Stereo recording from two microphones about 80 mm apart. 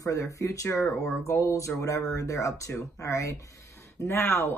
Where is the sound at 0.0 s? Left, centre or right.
Left.